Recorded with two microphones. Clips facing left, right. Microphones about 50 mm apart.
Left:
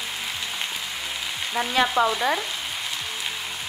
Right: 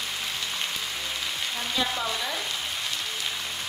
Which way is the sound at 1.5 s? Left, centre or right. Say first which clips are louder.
Left 10 dB; left.